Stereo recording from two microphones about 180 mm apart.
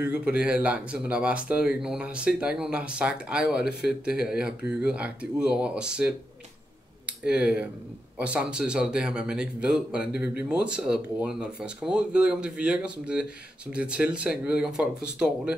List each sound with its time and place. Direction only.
0.0 s speech: 5° right (ahead or behind)
7.2 s speech: 5° right (ahead or behind)